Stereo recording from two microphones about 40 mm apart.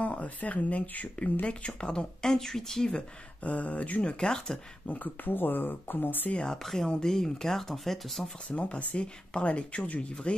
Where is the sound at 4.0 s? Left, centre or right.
Left.